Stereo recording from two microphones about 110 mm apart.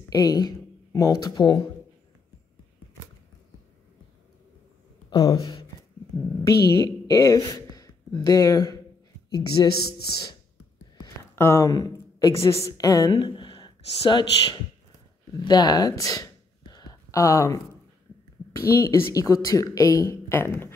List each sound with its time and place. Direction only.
0.1 s speech: 35° left (ahead or behind)
5.1 s speech: 50° left (ahead or behind)
6.4 s a woman's voice: 30° left (ahead or behind)
11.3 s speech: 25° left (ahead or behind)
11.7 s a woman's voice: 35° left (ahead or behind)
13.2 s a woman's voice: 50° left (ahead or behind); by 20.2 s 30° left (ahead or behind)
20.2 s speech: 20° left (ahead or behind)